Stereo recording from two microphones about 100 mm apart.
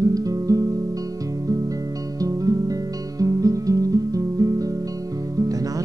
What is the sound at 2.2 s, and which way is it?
Music, 35° right (ahead or behind).